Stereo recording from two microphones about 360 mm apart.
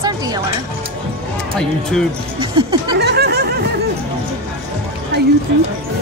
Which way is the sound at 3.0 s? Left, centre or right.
Right.